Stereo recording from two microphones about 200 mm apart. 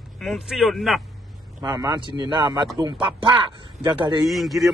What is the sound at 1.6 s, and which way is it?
A man's voice, 20° right (ahead or behind).